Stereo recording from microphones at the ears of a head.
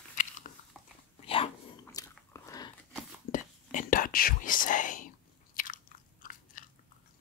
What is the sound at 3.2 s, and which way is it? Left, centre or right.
Whispering, left.